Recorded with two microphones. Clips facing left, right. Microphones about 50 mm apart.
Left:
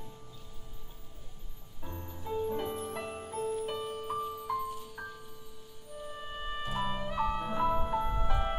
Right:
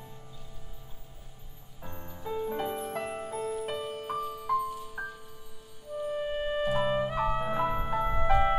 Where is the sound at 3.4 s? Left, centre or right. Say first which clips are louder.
Left 2 dB; right.